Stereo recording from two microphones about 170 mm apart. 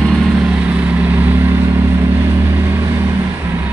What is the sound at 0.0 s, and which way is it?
Vehicle, centre (ahead or behind).